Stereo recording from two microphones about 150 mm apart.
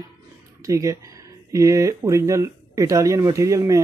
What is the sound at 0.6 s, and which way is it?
Speech, 20° right (ahead or behind).